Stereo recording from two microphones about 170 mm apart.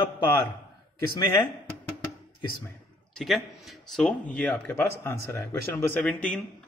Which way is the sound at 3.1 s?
Centre (ahead or behind).